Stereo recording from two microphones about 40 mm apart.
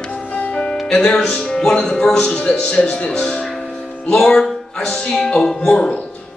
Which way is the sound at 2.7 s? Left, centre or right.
Left.